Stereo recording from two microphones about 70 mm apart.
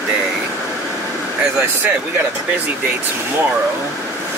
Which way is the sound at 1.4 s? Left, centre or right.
Right.